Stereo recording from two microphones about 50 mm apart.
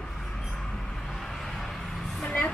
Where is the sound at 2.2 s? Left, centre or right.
Left.